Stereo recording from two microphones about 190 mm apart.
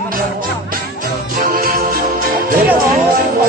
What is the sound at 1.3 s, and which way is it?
Music, 50° right (ahead or behind).